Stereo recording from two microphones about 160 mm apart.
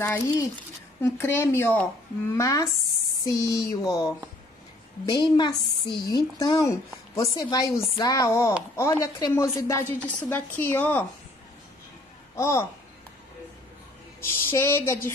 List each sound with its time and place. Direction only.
0.0 s a woman's voice: 15° left (ahead or behind)
12.4 s speech: 15° left (ahead or behind)
14.2 s speech: 15° left (ahead or behind)